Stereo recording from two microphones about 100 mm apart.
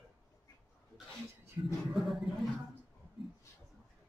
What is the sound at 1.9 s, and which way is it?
Music, centre (ahead or behind).